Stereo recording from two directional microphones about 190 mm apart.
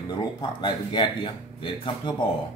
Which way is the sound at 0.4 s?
25° left (ahead or behind).